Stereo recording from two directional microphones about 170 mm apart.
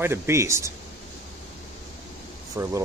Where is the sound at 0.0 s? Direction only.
15° right (ahead or behind).